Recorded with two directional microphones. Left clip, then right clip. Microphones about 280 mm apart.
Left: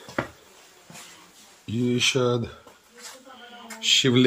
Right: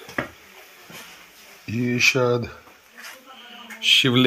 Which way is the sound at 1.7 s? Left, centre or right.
Right.